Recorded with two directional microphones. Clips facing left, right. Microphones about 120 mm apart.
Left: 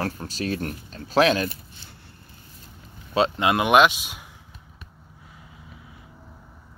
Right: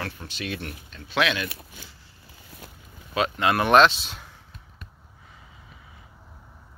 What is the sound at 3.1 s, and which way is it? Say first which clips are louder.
Speech: left 2 dB; 25° left (ahead or behind).